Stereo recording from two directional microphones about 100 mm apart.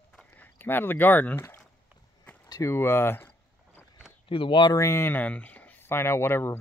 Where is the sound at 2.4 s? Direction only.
40° left (ahead or behind).